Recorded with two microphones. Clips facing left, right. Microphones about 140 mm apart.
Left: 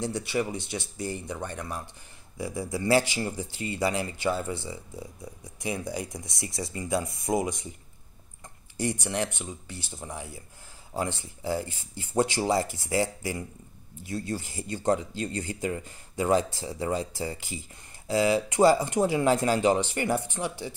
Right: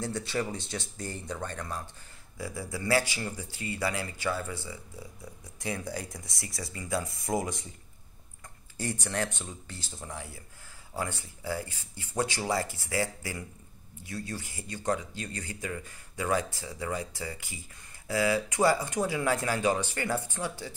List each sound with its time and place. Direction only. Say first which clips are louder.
0.0 s speech: left 3 dB; 15° left (ahead or behind)
8.7 s speech: left 4 dB; 15° left (ahead or behind)